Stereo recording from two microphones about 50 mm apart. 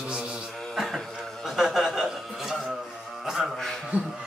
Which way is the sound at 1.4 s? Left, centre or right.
Centre.